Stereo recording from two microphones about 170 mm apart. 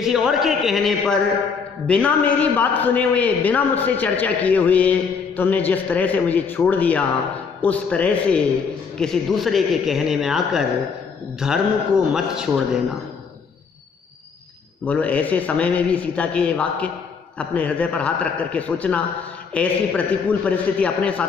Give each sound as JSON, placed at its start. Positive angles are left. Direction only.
{"t": 0.0, "sound": "a man's voice", "side_deg": 0}
{"t": 14.9, "sound": "a man's voice", "side_deg": 10}